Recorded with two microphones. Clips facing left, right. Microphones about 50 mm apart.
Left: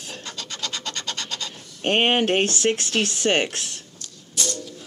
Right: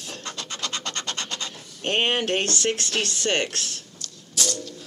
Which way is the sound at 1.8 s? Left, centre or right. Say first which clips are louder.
Left 4 dB; left.